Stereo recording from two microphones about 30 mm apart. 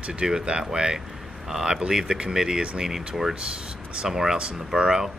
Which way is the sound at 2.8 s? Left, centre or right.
Centre.